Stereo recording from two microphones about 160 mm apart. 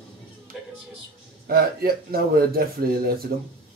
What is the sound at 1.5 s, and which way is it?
A man's voice, 70° right (ahead or behind).